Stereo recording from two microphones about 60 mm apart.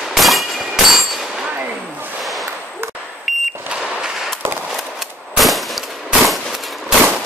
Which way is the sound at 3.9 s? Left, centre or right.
Centre.